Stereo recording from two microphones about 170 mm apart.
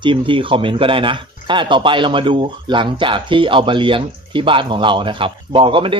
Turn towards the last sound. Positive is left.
turn(degrees=-30)  # may be behind; listen again after turning